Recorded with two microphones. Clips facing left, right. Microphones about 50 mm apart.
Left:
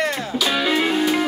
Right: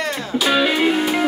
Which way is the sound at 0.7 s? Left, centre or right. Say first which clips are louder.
Right 1 dB; centre.